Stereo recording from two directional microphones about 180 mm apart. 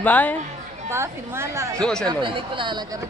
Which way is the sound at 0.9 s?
15° right (ahead or behind).